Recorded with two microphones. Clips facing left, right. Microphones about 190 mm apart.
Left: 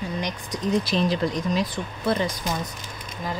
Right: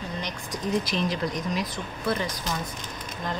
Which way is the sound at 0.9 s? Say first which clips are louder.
Left 4 dB; 30° left (ahead or behind).